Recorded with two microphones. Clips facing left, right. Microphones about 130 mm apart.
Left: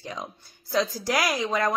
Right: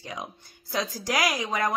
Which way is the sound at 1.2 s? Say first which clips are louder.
Left 2 dB; 15° right (ahead or behind).